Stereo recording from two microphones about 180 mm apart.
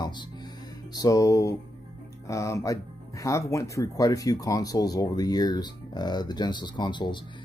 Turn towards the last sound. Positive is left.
turn(degrees=25)  # may be behind; listen again after turning